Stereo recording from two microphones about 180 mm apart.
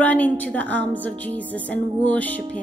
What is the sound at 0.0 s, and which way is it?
Speech, 10° left (ahead or behind).